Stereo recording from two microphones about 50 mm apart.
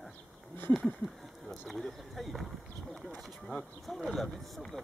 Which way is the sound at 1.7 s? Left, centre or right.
Centre.